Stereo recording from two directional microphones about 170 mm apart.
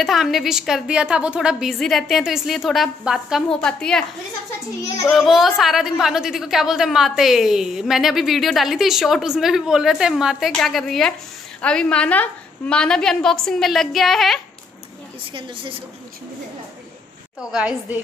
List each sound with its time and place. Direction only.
0.0 s a woman's voice: centre (ahead or behind)
5.1 s a woman's voice: centre (ahead or behind)
15.3 s a woman's voice: 30° right (ahead or behind)
17.5 s a woman's voice: 5° right (ahead or behind)